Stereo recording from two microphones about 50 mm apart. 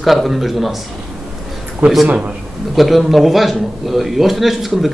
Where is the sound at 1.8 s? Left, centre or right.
Right.